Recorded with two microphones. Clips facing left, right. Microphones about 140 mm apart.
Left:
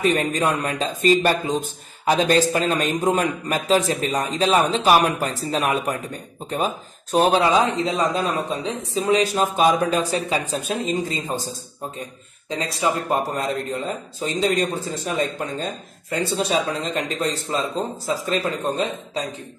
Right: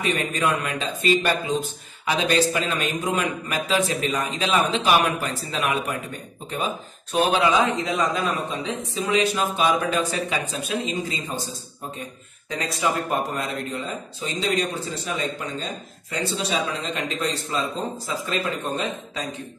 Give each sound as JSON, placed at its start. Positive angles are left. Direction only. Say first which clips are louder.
{"t": 0.0, "sound": "a man's voice", "louder": "left 4 dB", "side_deg": 40}
{"t": 12.4, "sound": "a man's voice", "louder": "left 2 dB", "side_deg": 30}